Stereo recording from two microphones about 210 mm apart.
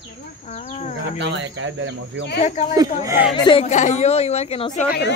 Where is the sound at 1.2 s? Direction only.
60° right (ahead or behind).